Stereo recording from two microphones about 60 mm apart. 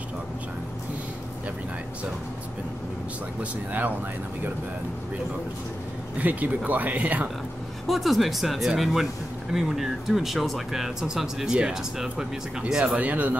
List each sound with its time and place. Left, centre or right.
6.1 s speech: right
7.8 s speech: centre; by 13.4 s right